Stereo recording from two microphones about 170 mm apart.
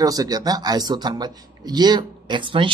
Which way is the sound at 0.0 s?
20° right (ahead or behind).